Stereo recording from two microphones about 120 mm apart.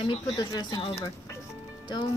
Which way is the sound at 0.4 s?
35° left (ahead or behind).